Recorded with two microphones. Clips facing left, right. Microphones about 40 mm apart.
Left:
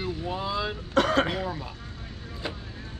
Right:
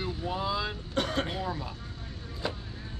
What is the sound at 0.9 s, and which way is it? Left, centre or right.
Throat clearing, left.